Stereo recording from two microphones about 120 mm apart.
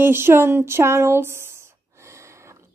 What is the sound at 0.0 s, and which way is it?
Speech, 20° right (ahead or behind).